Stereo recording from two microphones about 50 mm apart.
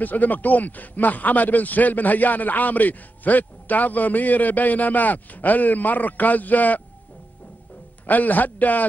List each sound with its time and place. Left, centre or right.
0.0 s a man's voice: left
8.1 s a man's voice: left